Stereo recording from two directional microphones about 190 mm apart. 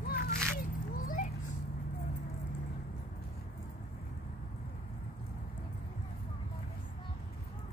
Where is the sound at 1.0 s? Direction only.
45° left (ahead or behind).